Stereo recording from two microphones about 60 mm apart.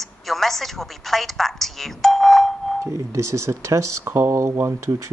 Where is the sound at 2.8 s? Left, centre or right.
Right.